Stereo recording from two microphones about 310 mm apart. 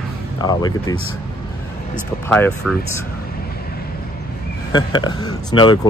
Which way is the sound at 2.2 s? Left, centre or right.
Centre.